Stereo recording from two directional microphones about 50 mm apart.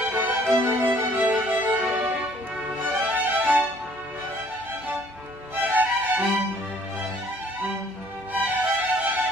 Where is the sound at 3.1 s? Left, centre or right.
Right.